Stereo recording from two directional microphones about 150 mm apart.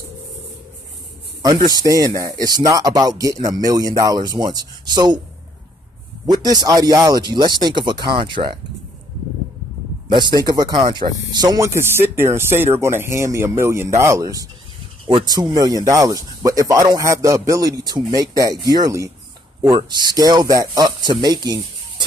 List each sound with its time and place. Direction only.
1.4 s speech: 30° right (ahead or behind)
6.2 s speech: 25° right (ahead or behind)
10.0 s speech: 30° right (ahead or behind)